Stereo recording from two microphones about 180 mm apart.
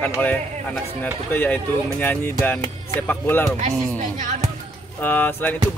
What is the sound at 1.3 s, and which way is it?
Speech, 10° left (ahead or behind).